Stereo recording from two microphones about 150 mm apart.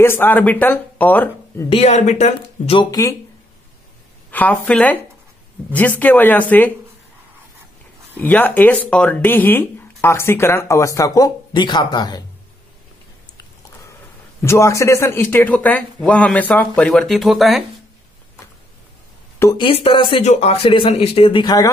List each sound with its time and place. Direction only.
0.0 s speech: 15° left (ahead or behind)
1.7 s speech: 45° left (ahead or behind)
2.9 s speech: 20° left (ahead or behind)
4.3 s speech: 10° left (ahead or behind)
8.2 s speech: 10° left (ahead or behind); by 12.3 s 25° left (ahead or behind)
14.4 s speech: 20° left (ahead or behind); by 17.6 s centre (ahead or behind)
19.5 s speech: 35° left (ahead or behind)